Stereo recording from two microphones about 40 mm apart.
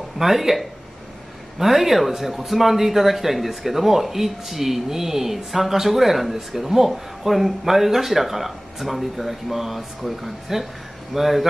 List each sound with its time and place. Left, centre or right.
0.2 s speech: centre